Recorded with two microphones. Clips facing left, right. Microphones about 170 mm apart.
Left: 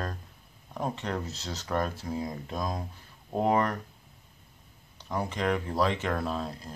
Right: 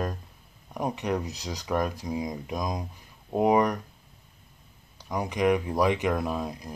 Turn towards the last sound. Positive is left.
turn(degrees=-15)  # may be behind; listen again after turning